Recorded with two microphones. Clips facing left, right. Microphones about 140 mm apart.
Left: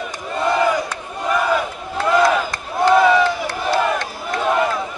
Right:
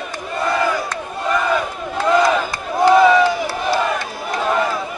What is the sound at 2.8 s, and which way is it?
Crowd, centre (ahead or behind).